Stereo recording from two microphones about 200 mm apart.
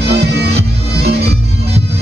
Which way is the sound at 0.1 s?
55° right (ahead or behind).